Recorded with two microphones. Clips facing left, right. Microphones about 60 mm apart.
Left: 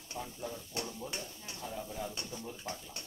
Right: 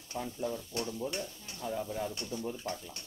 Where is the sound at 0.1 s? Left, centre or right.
Right.